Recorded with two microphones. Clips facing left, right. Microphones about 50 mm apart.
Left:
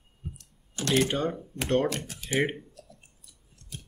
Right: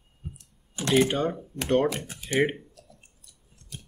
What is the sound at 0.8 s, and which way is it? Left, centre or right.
Speech, centre.